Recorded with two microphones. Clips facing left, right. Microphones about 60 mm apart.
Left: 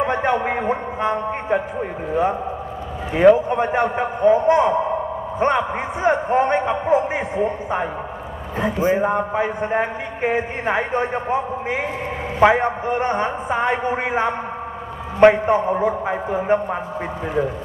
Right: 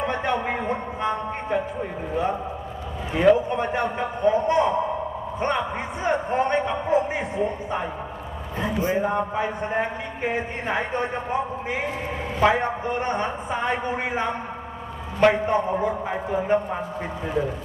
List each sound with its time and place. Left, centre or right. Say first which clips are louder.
0.0 s a sound: left 5 dB; left
3.2 s a man's voice: left 5 dB; left
6.0 s a man's voice: left 5 dB; left